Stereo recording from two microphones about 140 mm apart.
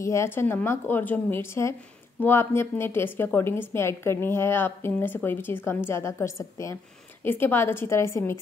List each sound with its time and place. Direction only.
0.0 s a woman's voice: 20° left (ahead or behind)